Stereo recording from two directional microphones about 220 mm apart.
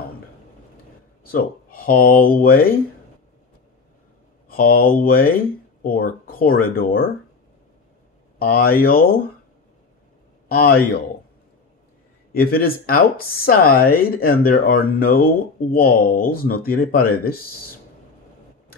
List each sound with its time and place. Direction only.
1.2 s speech: 40° left (ahead or behind)
4.5 s speech: 40° left (ahead or behind)
8.4 s speech: 45° left (ahead or behind)
10.5 s speech: 45° left (ahead or behind)
12.4 s speech: 40° left (ahead or behind)